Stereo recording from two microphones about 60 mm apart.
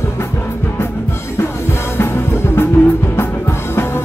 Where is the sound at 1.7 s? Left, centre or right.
Left.